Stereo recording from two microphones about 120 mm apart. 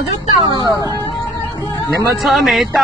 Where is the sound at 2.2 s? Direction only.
Centre (ahead or behind).